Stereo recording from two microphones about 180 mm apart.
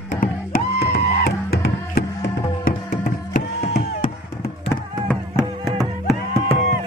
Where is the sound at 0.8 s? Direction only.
60° left (ahead or behind).